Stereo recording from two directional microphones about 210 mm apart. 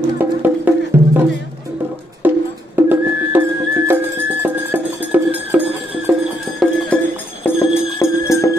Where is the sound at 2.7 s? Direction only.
10° right (ahead or behind).